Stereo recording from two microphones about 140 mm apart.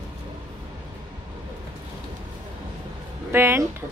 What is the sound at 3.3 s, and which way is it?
Speech, 15° right (ahead or behind).